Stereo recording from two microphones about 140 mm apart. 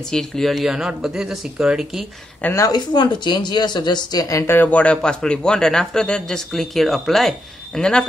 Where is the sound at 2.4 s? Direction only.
20° left (ahead or behind).